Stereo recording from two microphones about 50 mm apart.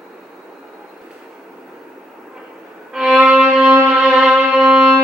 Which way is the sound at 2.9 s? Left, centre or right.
Centre.